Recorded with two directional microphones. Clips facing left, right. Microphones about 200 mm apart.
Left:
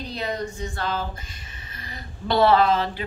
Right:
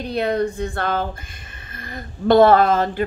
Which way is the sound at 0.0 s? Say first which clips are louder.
Right 8 dB; 60° right (ahead or behind).